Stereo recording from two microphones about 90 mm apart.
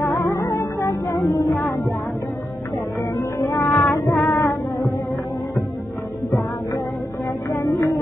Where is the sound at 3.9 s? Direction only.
5° right (ahead or behind).